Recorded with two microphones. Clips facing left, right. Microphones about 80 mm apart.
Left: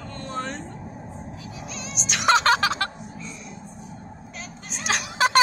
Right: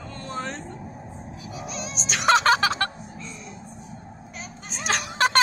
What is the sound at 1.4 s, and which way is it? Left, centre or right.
Music, right.